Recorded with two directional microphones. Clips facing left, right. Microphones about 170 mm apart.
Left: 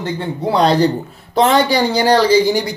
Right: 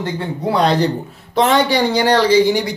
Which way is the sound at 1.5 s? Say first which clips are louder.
Even; 35° left (ahead or behind).